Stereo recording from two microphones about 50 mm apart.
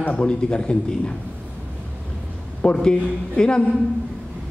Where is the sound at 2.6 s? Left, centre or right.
Centre.